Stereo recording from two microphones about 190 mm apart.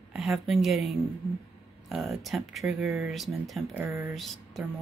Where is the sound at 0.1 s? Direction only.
5° right (ahead or behind).